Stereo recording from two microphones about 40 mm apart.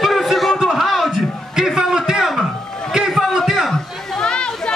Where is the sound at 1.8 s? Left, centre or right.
Centre.